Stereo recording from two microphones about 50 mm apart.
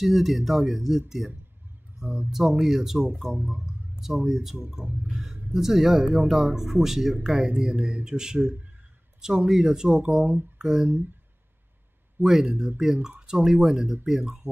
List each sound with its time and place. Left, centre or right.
0.0 s speech: centre
2.3 s speech: centre
3.3 s speech: right
4.0 s speech: centre
12.2 s speech: centre